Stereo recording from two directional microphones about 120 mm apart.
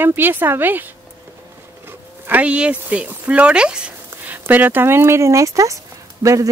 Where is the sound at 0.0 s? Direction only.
15° right (ahead or behind).